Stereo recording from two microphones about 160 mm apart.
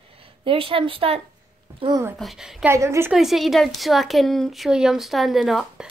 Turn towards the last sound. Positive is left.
turn(degrees=0)  # may be behind; listen again after turning